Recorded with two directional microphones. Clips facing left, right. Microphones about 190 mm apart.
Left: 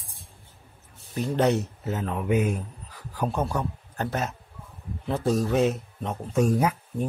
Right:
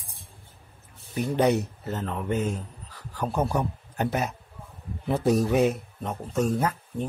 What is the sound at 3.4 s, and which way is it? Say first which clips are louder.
A man's voice: right 2 dB; 15° right (ahead or behind).